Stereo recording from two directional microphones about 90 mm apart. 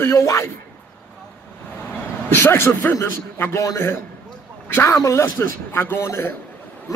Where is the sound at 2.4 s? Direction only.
30° left (ahead or behind).